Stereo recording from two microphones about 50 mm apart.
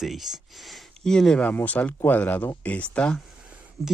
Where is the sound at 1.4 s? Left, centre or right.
Left.